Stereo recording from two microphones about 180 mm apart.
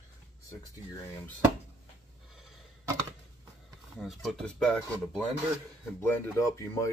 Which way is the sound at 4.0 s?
Centre (ahead or behind).